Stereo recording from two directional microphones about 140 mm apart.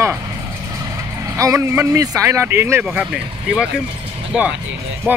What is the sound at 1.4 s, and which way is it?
Speech, 20° right (ahead or behind).